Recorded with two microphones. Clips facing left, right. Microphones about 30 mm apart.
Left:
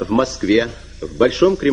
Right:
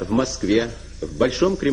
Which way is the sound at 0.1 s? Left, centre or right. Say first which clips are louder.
Left 4 dB; left.